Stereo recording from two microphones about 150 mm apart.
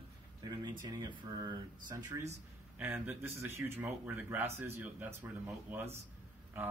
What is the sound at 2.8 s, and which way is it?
Speech, 15° right (ahead or behind).